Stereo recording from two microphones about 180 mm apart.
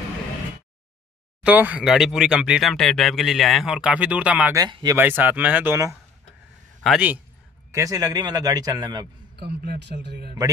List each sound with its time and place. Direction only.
1.4 s speech: 10° right (ahead or behind)
4.6 s speech: 20° right (ahead or behind)
4.9 s a man's voice: 10° right (ahead or behind)
7.7 s speech: 20° right (ahead or behind)
9.4 s a man's voice: 60° right (ahead or behind)